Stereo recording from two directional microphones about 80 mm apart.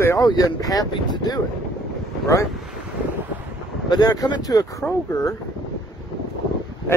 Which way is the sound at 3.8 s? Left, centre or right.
Left.